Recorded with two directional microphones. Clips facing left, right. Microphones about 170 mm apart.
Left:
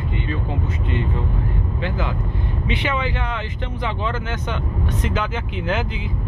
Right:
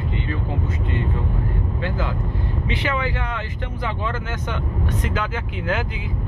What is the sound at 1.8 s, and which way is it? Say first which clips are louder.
Speech: left 1 dB; 15° left (ahead or behind).